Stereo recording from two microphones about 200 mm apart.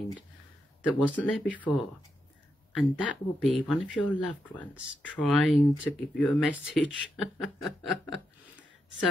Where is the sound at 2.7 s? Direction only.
Centre (ahead or behind).